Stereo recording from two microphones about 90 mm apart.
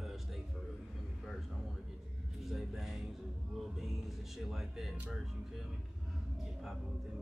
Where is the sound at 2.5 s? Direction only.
5° right (ahead or behind).